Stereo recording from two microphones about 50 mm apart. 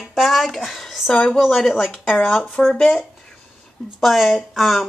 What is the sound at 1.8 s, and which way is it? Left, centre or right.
Speech, centre.